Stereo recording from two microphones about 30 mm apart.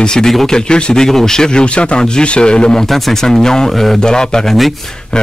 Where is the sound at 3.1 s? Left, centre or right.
Centre.